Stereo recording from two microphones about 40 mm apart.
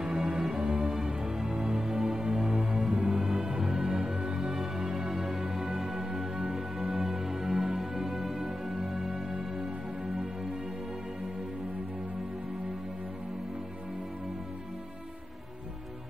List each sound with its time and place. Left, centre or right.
0.0 s music: right